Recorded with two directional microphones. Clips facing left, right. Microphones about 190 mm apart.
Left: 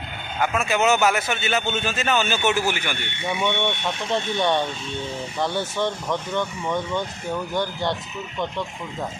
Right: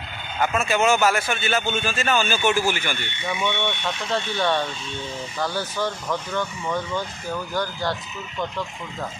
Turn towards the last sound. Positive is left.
turn(degrees=20)  # may be behind; listen again after turning